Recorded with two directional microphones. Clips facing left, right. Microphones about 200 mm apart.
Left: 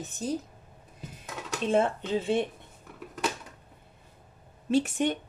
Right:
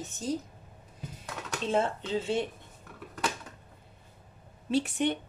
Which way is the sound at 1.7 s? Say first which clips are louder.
Left 3 dB; 55° left (ahead or behind).